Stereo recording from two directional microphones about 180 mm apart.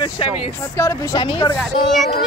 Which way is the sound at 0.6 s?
15° left (ahead or behind).